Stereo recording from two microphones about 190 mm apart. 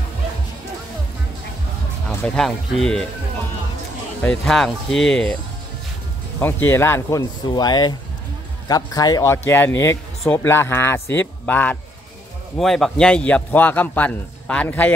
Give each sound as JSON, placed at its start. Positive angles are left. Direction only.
{"t": 2.0, "sound": "speech", "side_deg": 0}
{"t": 4.2, "sound": "speech", "side_deg": 5}
{"t": 6.4, "sound": "speech", "side_deg": 10}